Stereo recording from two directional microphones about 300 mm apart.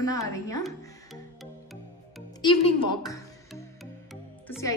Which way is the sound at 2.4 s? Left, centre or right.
Centre.